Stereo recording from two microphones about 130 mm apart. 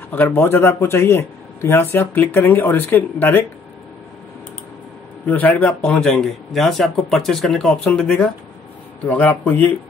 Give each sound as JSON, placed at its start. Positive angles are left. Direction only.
{"t": 0.1, "sound": "speech", "side_deg": 15}
{"t": 5.2, "sound": "speech", "side_deg": 15}